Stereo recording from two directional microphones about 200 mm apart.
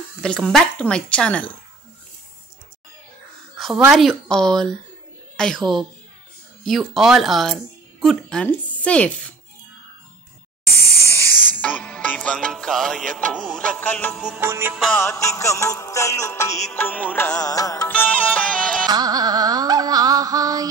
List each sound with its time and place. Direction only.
0.2 s speech: 5° left (ahead or behind)
3.5 s a sound: centre (ahead or behind)
3.9 s speech: centre (ahead or behind)
11.0 s music: 15° left (ahead or behind); by 14.8 s 10° right (ahead or behind)
14.8 s music: 5° left (ahead or behind)
18.9 s music: 20° right (ahead or behind)